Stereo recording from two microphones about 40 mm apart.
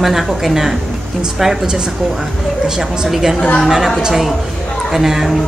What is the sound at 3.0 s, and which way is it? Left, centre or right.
Speech, centre.